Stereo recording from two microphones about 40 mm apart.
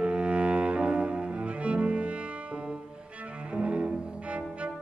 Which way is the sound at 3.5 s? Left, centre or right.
Right.